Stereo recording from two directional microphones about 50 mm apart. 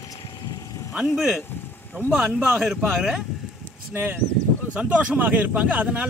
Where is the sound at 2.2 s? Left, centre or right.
Right.